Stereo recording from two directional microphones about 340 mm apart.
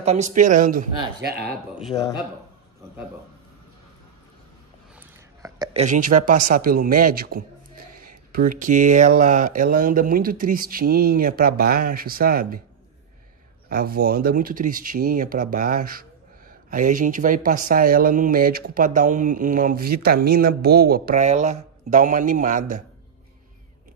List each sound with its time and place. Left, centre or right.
0.0 s speech: centre
1.9 s a man's voice: centre
4.9 s speech: centre
13.7 s speech: right